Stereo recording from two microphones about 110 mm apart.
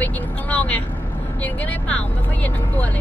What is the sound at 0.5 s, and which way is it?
Speech, 15° left (ahead or behind).